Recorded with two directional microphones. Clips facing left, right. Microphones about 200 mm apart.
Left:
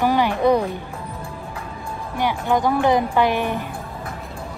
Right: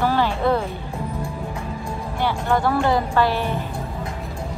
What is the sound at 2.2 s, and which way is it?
A woman's voice, 15° left (ahead or behind).